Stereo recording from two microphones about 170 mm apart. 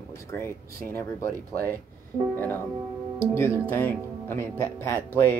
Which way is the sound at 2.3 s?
10° left (ahead or behind).